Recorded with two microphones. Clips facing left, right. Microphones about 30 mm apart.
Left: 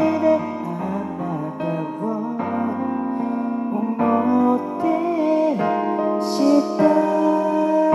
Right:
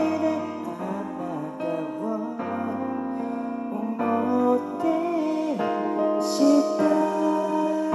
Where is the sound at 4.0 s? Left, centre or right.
Centre.